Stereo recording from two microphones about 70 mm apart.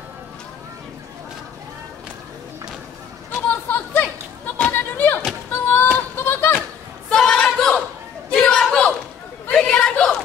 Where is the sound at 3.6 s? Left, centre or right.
Left.